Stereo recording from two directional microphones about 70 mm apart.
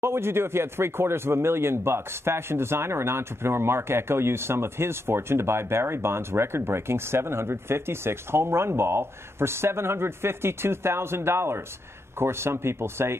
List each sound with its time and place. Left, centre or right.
0.0 s speech: right